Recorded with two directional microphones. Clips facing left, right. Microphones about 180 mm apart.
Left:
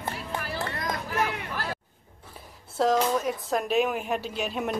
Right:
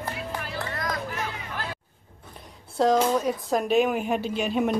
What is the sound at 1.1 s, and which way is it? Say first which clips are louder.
Hubbub: left 5 dB; 65° left (ahead or behind).